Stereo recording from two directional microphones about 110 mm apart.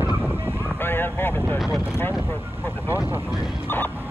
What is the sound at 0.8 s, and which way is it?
Vehicle, 20° left (ahead or behind).